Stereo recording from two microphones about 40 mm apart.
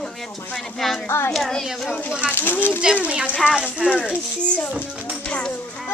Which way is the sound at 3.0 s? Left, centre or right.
Right.